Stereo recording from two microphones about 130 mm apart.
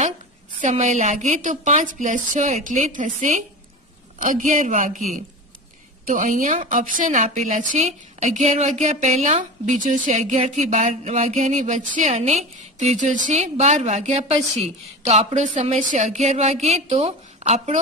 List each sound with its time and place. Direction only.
0.6 s a woman's voice: 70° right (ahead or behind)
4.2 s a man's voice: 90° right
6.0 s a man's voice: 80° right; by 17.7 s 55° right (ahead or behind)